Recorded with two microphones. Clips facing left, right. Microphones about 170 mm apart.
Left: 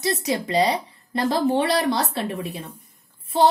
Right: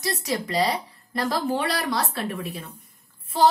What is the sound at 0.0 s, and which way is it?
A woman's voice, 25° left (ahead or behind).